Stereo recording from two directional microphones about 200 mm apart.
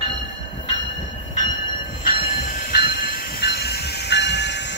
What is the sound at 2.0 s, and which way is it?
Train, 50° left (ahead or behind).